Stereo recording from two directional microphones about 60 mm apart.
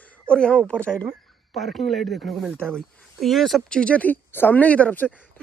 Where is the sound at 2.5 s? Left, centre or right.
Centre.